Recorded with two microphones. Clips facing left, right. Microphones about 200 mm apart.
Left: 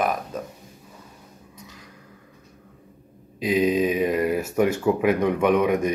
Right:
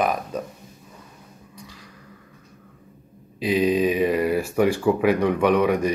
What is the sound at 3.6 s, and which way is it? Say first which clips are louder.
Mantra: right 2 dB; 5° right (ahead or behind).